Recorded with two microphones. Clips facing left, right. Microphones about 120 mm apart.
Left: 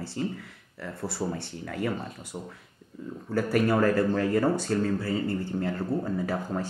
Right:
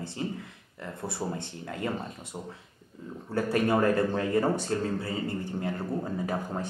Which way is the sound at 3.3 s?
25° right (ahead or behind).